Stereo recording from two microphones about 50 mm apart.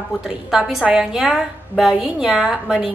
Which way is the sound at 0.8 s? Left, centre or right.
Right.